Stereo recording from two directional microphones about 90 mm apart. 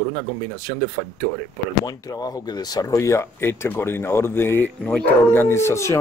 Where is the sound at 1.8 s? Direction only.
45° left (ahead or behind).